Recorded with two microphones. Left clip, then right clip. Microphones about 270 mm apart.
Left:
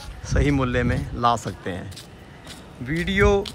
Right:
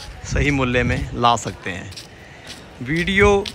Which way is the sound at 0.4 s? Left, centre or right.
Centre.